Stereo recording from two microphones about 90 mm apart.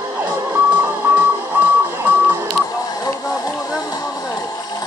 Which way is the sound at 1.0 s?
20° right (ahead or behind).